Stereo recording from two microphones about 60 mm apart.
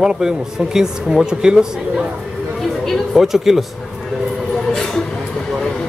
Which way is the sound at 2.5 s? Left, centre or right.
Centre.